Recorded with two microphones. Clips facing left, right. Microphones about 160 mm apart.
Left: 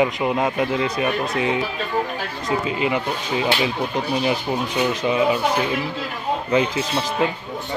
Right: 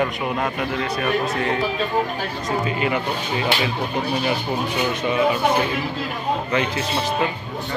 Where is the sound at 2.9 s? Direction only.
10° left (ahead or behind).